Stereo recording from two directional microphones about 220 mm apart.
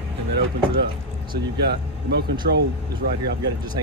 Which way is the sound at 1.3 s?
45° right (ahead or behind).